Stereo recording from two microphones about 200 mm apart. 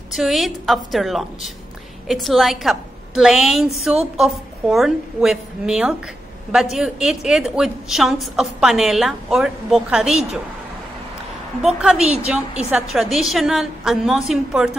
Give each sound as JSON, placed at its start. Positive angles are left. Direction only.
{"t": 0.1, "sound": "a woman's voice", "side_deg": 0}
{"t": 11.6, "sound": "a woman's voice", "side_deg": -5}